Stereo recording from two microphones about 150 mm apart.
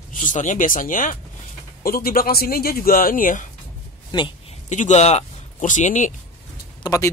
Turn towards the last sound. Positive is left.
turn(degrees=20)  # may be behind; listen again after turning